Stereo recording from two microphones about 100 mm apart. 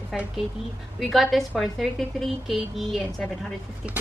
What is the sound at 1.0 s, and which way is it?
A woman's voice, centre (ahead or behind).